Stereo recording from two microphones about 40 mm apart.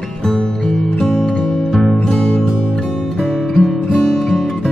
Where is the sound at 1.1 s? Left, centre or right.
Centre.